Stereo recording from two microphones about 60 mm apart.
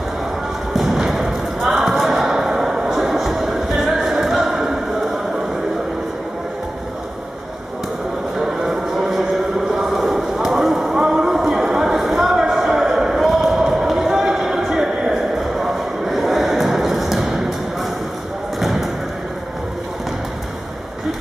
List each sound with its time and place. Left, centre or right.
0.7 s basketball bounce: centre
3.7 s music: centre
4.1 s music: centre
8.4 s music: centre
10.3 s a sound: centre
18.6 s thump: centre